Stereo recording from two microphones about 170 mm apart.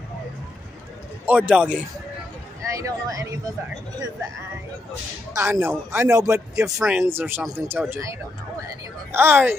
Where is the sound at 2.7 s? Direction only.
20° right (ahead or behind).